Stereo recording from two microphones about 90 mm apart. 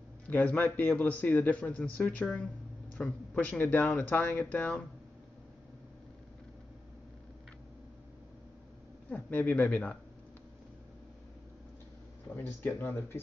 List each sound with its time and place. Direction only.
0.3 s a man's voice: 15° left (ahead or behind)
9.1 s speech: 20° left (ahead or behind)
12.4 s speech: 20° left (ahead or behind)